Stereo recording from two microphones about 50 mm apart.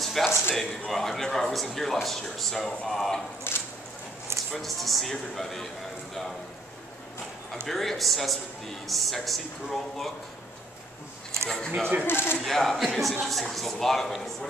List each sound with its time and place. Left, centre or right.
0.0 s a sound: centre
0.6 s speech: centre
3.5 s a sound: left
4.5 s speech: centre
7.6 s speech: centre
11.4 s speech: centre
12.1 s speech: left
12.4 s speech: centre